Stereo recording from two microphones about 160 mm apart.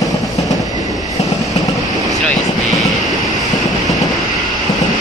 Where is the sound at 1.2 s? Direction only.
40° left (ahead or behind).